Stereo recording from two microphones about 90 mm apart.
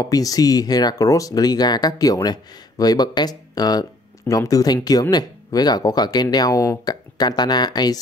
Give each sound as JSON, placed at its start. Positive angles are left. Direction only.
{"t": 0.0, "sound": "speech", "side_deg": 40}